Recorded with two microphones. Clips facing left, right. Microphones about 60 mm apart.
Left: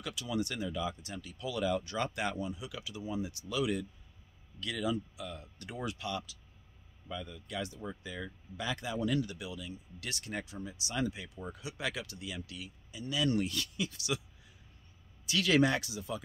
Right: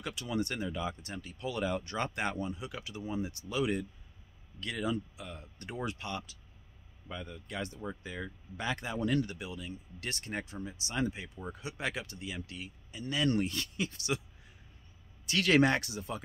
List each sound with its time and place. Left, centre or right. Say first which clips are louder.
0.0 s speech: right 1 dB; right
13.4 s a man's voice: right 1 dB; right